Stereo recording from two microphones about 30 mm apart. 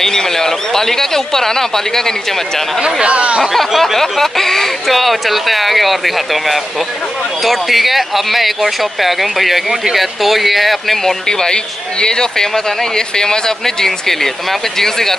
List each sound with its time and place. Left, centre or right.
0.0 s speech: centre
2.8 s speech: right
3.8 s speech: centre
4.8 s speech: centre
11.2 s speech: left